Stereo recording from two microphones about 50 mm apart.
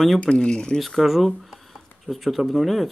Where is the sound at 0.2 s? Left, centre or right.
Centre.